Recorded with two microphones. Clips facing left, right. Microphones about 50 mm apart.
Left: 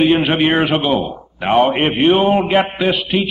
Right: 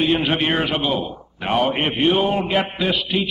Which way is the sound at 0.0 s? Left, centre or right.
Left.